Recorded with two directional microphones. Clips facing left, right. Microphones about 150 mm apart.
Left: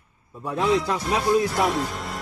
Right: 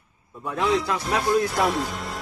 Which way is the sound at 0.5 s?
Centre (ahead or behind).